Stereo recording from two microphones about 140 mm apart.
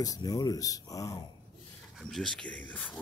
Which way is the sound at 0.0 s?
25° left (ahead or behind).